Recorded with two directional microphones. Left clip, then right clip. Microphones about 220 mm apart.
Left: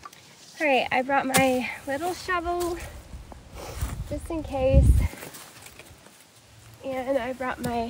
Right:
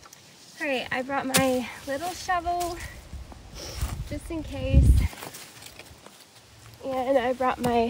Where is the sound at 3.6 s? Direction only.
Centre (ahead or behind).